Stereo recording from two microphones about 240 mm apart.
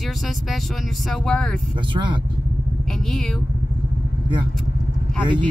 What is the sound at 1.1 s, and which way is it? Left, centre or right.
Speech, centre.